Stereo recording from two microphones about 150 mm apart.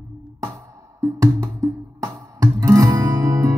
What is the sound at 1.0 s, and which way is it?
Music, 20° right (ahead or behind).